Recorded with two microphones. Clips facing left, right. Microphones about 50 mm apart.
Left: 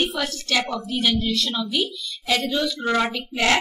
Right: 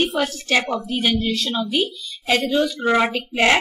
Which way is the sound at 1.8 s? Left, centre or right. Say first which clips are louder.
Right 3 dB; right.